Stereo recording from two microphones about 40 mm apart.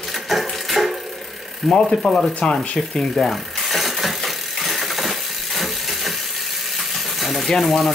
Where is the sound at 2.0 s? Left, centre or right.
Centre.